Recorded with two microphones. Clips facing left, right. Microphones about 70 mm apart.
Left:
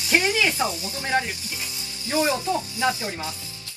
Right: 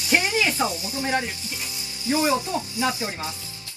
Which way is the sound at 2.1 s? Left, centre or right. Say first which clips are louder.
Even; right.